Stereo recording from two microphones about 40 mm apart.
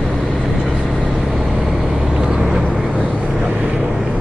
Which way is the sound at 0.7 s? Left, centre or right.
Centre.